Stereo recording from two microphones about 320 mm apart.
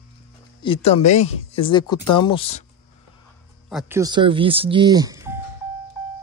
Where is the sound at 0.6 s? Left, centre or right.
Centre.